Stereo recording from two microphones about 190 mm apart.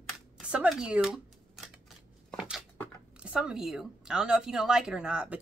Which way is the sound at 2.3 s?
5° right (ahead or behind).